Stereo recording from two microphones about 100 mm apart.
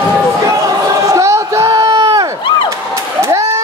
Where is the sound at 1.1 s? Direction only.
30° right (ahead or behind).